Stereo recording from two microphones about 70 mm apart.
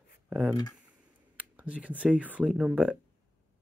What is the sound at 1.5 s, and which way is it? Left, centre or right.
Speech, centre.